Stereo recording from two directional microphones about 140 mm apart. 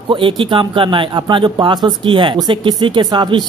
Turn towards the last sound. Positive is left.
turn(degrees=-30)  # may be behind; listen again after turning